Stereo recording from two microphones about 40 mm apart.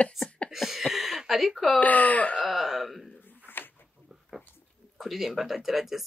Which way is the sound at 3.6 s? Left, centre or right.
Left.